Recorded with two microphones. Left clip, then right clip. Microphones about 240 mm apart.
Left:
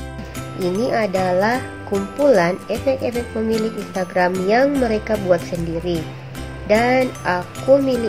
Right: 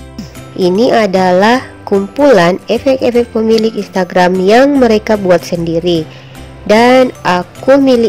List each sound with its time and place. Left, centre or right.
0.6 s speech: right